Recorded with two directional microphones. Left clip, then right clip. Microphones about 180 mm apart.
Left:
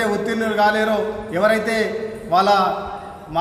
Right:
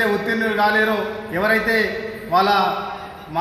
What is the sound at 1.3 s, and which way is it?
Speech, 30° left (ahead or behind).